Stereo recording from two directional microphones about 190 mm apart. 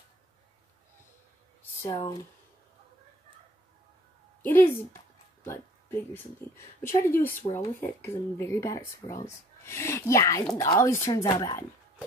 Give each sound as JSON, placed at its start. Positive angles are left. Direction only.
{"t": 1.9, "sound": "speech", "side_deg": 25}
{"t": 4.4, "sound": "a woman's voice", "side_deg": 10}